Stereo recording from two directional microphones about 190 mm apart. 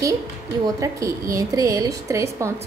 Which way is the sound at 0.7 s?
15° right (ahead or behind).